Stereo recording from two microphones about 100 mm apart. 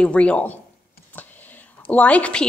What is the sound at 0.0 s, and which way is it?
Speech, 10° left (ahead or behind).